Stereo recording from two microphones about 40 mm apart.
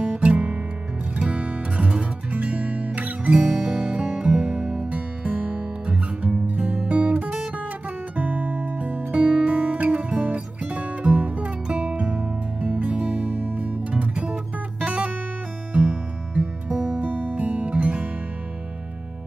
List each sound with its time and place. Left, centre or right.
0.0 s music: right
3.4 s music: centre
3.7 s music: right
11.6 s music: right
17.0 s music: right